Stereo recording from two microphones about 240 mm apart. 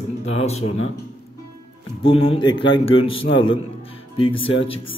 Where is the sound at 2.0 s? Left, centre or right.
Left.